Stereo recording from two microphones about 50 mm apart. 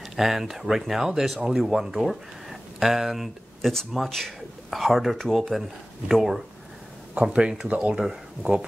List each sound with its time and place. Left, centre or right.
0.1 s speech: centre
7.2 s speech: centre
8.0 s speech: centre